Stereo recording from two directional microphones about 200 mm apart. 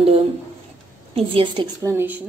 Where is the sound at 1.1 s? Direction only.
25° right (ahead or behind).